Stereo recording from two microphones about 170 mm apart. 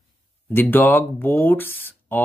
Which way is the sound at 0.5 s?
10° left (ahead or behind).